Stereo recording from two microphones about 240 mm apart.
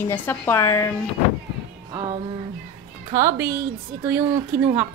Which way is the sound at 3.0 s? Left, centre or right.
Centre.